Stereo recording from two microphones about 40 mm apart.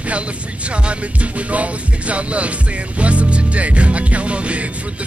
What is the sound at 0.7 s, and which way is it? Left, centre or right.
Music, right.